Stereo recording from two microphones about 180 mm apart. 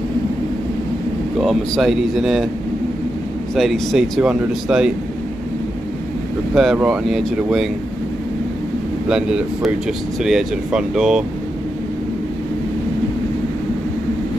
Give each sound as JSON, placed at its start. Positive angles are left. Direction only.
{"t": 1.4, "sound": "speech", "side_deg": 0}
{"t": 3.5, "sound": "speech", "side_deg": 0}
{"t": 6.5, "sound": "speech", "side_deg": -5}
{"t": 9.1, "sound": "speech", "side_deg": -5}